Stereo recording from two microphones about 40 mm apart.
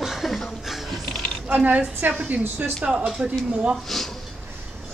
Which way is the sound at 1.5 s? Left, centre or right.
Right.